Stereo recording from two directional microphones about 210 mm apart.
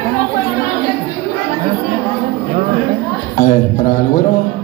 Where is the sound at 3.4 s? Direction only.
40° left (ahead or behind).